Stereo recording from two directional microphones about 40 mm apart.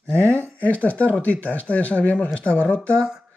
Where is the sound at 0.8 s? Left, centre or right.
Left.